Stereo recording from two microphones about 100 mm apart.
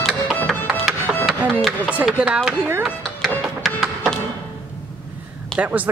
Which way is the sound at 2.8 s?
Centre (ahead or behind).